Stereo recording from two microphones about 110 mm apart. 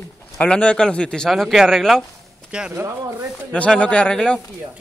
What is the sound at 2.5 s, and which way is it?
Speech, 10° right (ahead or behind).